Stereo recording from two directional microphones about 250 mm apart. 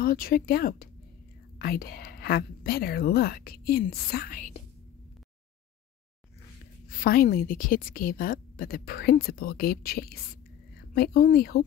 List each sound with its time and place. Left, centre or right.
0.0 s a woman's voice: left
6.9 s a woman's voice: left